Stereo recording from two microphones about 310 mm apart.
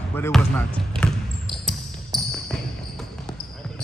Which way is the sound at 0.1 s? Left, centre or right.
Centre.